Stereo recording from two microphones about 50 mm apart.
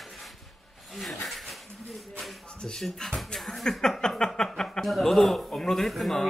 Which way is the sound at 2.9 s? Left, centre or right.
Centre.